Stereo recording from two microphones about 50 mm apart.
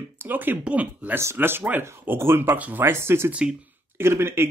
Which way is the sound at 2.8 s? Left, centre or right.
Right.